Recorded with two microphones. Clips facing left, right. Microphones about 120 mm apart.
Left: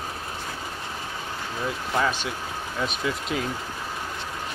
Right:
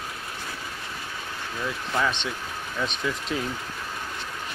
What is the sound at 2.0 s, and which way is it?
Speech, 5° left (ahead or behind).